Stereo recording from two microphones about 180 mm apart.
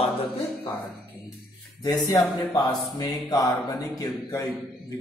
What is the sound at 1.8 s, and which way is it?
Speech, 20° left (ahead or behind).